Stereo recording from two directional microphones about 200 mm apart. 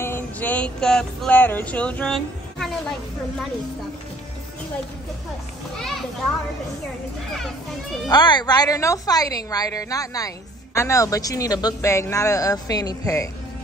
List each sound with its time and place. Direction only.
0.0 s speech: 10° left (ahead or behind)
5.8 s a child's voice: centre (ahead or behind)
8.1 s a woman's voice: 20° left (ahead or behind)